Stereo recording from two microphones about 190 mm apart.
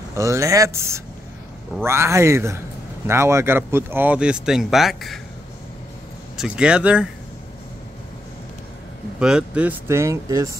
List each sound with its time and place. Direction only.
0.1 s speech: 15° right (ahead or behind); by 5.2 s centre (ahead or behind)
6.3 s speech: 5° right (ahead or behind)
9.2 s speech: 5° right (ahead or behind)